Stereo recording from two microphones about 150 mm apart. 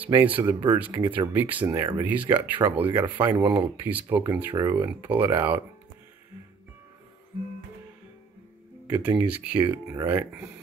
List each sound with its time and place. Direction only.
0.0 s speech: 10° right (ahead or behind)
2.0 s speech: 10° right (ahead or behind)
8.8 s speech: 10° right (ahead or behind)